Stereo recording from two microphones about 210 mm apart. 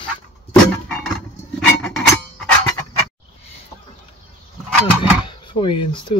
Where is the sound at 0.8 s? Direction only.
5° left (ahead or behind).